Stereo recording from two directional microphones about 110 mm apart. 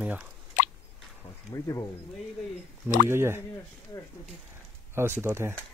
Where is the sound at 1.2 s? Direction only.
30° left (ahead or behind).